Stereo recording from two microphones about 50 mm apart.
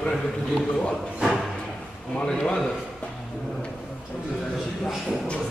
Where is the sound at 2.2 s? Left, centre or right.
Centre.